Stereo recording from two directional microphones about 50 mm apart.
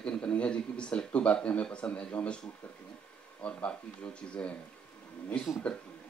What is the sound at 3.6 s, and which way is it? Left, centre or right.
Speech, left.